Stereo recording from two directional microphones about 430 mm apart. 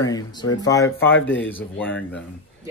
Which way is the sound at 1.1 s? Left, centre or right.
Left.